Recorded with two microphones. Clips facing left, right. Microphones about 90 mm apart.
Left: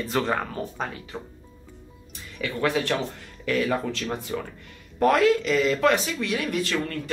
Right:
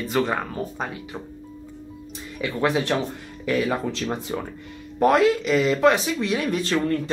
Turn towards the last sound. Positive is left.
turn(degrees=-25)  # may be behind; listen again after turning